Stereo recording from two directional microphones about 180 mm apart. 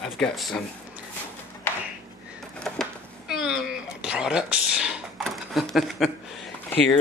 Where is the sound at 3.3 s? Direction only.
5° right (ahead or behind).